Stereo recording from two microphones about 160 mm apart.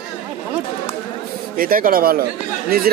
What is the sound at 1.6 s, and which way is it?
Speech, 60° right (ahead or behind).